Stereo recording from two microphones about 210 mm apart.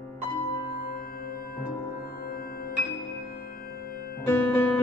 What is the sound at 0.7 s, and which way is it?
Music, 45° left (ahead or behind).